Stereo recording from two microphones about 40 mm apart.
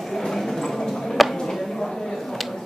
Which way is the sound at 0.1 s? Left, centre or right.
Centre.